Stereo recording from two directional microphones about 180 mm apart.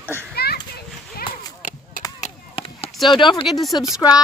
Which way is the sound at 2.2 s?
35° left (ahead or behind).